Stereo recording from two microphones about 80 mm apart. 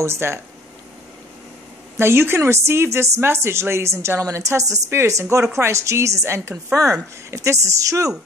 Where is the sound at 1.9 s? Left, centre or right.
Right.